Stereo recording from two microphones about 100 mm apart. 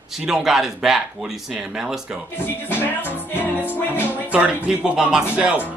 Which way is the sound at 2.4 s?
20° left (ahead or behind).